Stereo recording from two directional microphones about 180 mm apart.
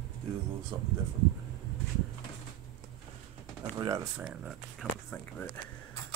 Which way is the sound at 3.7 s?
15° right (ahead or behind).